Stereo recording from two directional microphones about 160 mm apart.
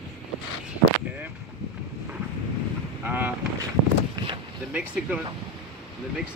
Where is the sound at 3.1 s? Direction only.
10° right (ahead or behind).